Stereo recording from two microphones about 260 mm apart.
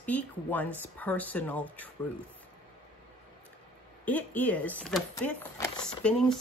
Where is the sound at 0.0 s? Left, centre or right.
Centre.